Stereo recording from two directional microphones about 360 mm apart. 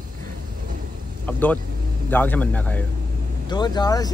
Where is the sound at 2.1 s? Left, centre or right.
Centre.